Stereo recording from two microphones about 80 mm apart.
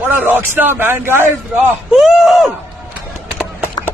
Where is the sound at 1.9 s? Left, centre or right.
Centre.